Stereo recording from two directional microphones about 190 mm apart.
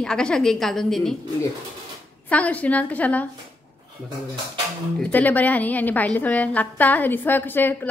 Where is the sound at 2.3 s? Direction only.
5° left (ahead or behind).